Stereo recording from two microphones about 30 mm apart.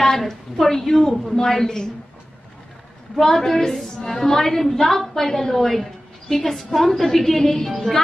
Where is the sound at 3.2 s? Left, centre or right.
Centre.